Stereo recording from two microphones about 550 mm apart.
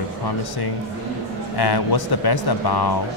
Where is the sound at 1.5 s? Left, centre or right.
Left.